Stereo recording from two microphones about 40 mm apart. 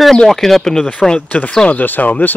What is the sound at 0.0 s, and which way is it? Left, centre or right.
Speech, centre.